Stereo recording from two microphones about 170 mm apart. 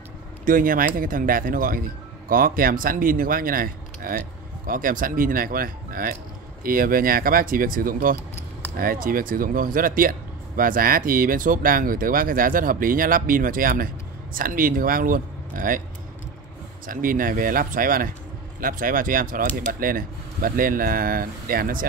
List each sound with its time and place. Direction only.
0.5 s speech: 55° right (ahead or behind)
16.8 s speech: 55° right (ahead or behind)